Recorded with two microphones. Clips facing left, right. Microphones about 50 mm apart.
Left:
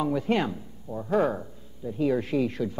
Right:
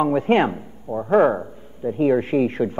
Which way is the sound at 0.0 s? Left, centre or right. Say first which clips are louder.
Right 8 dB; right.